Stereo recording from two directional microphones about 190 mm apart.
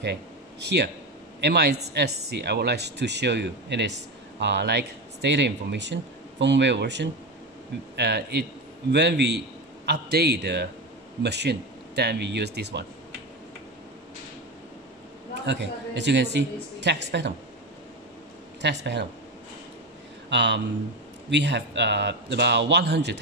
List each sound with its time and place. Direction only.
0.0 s speech: 65° right (ahead or behind)
15.4 s speech: 65° right (ahead or behind)
18.6 s speech: 65° right (ahead or behind)
20.2 s speech: 65° right (ahead or behind)